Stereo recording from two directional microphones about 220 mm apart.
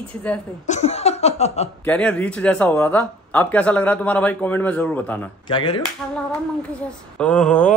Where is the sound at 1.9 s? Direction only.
5° left (ahead or behind).